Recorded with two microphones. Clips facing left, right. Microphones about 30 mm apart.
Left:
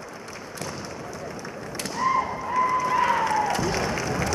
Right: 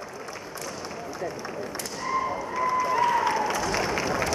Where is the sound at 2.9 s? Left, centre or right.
Centre.